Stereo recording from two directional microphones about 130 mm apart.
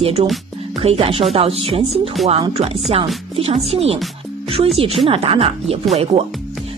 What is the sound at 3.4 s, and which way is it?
Speech, 50° right (ahead or behind).